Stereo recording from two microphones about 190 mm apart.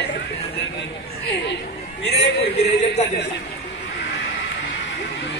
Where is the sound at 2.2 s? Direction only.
55° left (ahead or behind).